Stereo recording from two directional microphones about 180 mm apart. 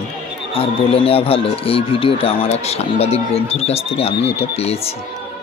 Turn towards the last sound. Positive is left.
turn(degrees=35)  # may be behind; listen again after turning